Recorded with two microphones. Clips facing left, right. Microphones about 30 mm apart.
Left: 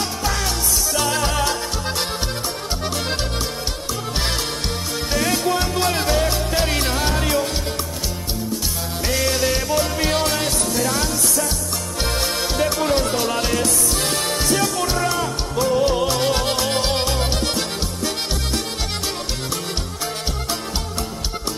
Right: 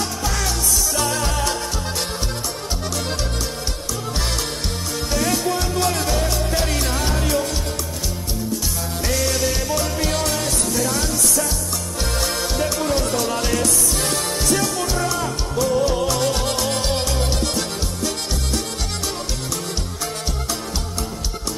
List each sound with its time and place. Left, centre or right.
0.9 s music: centre
5.1 s music: centre
5.4 s music: left
9.0 s music: centre
14.2 s music: left